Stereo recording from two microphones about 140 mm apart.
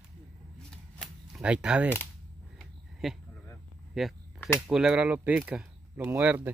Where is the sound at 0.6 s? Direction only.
5° left (ahead or behind).